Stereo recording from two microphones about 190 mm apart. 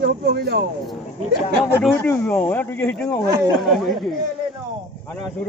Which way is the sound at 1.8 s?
10° left (ahead or behind).